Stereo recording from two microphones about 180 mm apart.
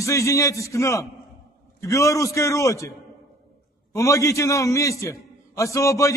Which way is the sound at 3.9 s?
15° left (ahead or behind).